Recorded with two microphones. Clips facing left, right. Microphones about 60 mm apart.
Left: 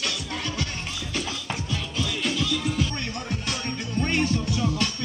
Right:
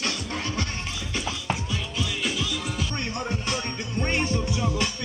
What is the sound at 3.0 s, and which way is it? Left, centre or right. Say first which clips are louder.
Music: right 2 dB; right.